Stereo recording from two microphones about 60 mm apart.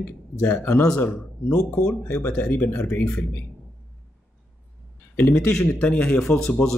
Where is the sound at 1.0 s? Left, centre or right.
Centre.